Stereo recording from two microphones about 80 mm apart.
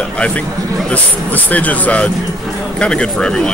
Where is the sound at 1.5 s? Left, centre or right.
Centre.